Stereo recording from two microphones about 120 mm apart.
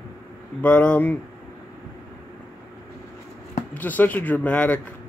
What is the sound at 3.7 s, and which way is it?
Speech, 15° left (ahead or behind).